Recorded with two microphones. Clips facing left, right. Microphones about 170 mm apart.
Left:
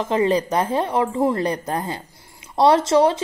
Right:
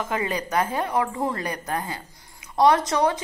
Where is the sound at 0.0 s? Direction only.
30° left (ahead or behind).